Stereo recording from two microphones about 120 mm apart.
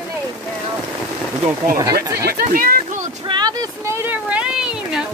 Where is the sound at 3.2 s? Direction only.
35° right (ahead or behind).